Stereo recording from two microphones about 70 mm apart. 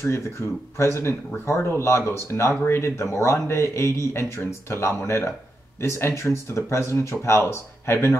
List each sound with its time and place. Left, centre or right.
0.7 s speech: left